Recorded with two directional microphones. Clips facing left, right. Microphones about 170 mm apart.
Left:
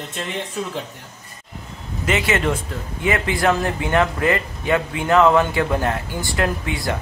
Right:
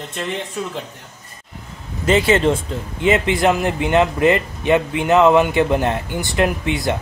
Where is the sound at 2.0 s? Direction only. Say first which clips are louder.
Right 5 dB; 30° right (ahead or behind).